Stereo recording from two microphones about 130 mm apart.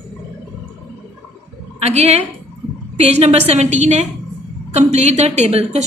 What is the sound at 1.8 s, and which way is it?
A woman's voice, 55° right (ahead or behind).